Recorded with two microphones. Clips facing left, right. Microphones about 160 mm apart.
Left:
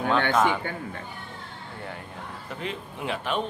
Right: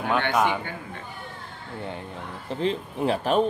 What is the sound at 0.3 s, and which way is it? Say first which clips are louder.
Speech: even; 15° right (ahead or behind).